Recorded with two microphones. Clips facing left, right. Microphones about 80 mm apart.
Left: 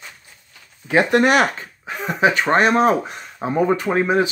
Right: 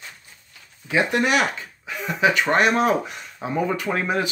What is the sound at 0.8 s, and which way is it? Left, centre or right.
Speech, left.